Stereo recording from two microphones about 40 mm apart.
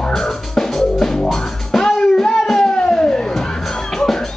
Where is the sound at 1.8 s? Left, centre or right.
Centre.